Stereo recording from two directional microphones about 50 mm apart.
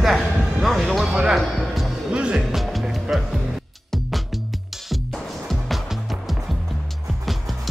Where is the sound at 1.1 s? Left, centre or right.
Centre.